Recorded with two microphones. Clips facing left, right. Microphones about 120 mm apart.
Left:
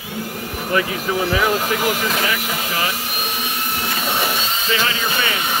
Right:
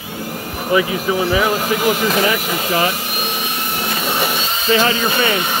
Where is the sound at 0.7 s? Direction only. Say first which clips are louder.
Right 4 dB; 5° right (ahead or behind).